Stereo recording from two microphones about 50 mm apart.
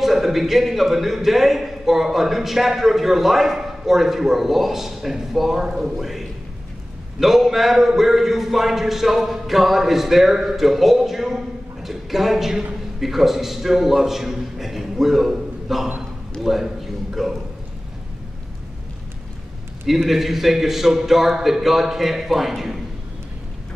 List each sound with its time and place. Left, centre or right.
0.0 s a man's voice: centre
16.0 s a sound: centre
19.9 s a man's voice: centre